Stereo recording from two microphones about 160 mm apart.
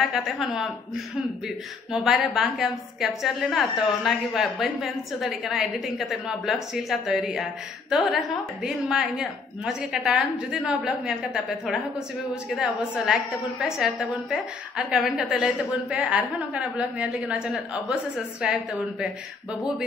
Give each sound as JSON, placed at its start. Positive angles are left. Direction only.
{"t": 0.0, "sound": "a woman's voice", "side_deg": -5}
{"t": 1.9, "sound": "a woman's voice", "side_deg": -5}